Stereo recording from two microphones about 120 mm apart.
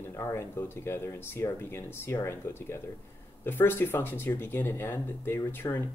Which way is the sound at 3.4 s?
20° left (ahead or behind).